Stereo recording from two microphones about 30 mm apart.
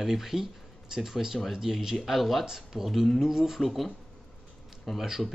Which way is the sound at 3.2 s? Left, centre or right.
Centre.